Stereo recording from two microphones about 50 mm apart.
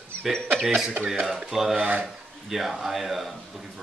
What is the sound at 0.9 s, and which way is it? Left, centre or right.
Speech, right.